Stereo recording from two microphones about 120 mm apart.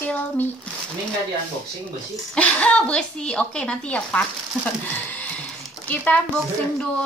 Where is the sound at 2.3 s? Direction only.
10° left (ahead or behind).